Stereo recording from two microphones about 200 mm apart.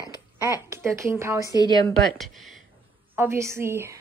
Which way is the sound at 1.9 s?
Centre (ahead or behind).